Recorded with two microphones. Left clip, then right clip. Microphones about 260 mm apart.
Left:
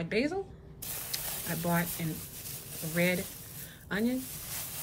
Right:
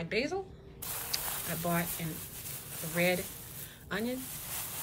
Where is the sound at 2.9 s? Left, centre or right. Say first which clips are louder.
Even; centre.